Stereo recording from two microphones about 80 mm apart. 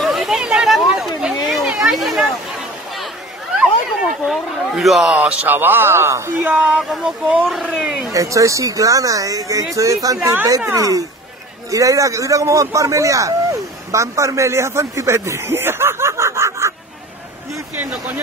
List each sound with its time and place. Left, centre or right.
0.0 s a sound: centre
4.3 s speech: centre
5.1 s speech: centre; by 6.5 s right
6.5 s speech: centre
6.8 s speech: centre
8.1 s a man's voice: right